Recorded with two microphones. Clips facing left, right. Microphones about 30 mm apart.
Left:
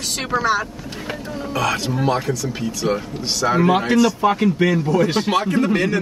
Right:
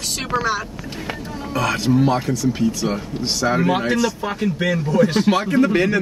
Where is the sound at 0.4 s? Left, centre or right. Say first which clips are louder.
Left 2 dB; centre.